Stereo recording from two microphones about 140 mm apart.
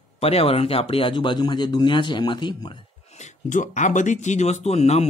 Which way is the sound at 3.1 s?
60° left (ahead or behind).